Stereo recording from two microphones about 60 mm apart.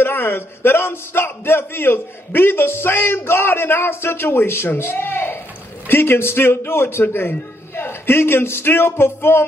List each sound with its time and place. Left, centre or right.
0.0 s a man's voice: left